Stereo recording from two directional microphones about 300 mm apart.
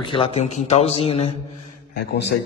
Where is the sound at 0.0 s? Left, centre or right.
Centre.